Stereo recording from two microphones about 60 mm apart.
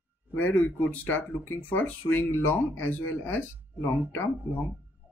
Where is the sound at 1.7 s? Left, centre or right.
Left.